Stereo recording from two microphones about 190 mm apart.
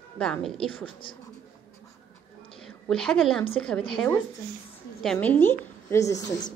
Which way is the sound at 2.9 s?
5° left (ahead or behind).